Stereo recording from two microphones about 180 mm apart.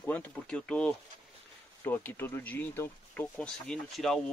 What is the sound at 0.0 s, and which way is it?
Speech, 10° left (ahead or behind).